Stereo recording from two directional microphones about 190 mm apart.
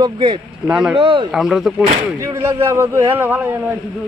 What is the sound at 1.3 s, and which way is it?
Speech, 5° right (ahead or behind).